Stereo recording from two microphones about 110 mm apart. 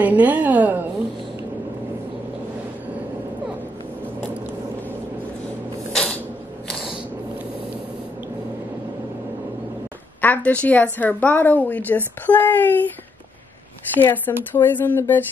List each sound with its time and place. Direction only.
0.0 s a woman's voice: 15° right (ahead or behind)
5.9 s a sound: 10° left (ahead or behind)
10.2 s a woman's voice: 15° left (ahead or behind)
13.9 s a woman's voice: 15° left (ahead or behind)